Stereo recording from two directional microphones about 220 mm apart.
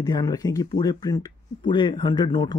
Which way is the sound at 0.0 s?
15° left (ahead or behind).